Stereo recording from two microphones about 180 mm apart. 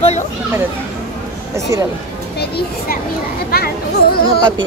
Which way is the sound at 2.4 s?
55° left (ahead or behind).